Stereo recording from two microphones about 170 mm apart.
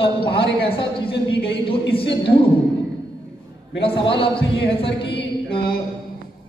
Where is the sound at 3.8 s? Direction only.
30° left (ahead or behind).